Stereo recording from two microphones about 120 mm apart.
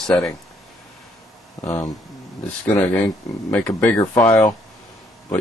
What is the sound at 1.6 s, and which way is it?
Speech, 25° left (ahead or behind).